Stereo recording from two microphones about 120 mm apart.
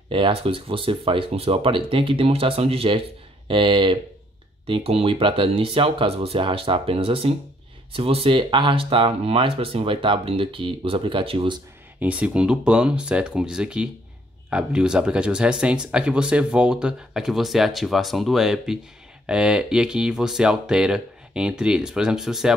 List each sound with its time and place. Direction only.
0.1 s speech: 50° right (ahead or behind)
12.0 s speech: 10° right (ahead or behind)